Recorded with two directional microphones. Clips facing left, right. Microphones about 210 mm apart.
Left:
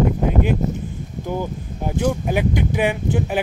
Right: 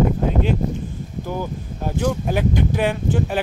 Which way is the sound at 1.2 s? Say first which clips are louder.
Left 2 dB; 15° left (ahead or behind).